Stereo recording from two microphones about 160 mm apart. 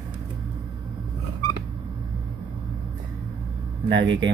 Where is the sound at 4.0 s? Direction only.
30° right (ahead or behind).